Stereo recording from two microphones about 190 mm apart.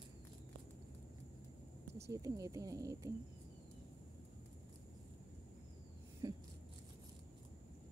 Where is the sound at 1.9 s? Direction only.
15° right (ahead or behind).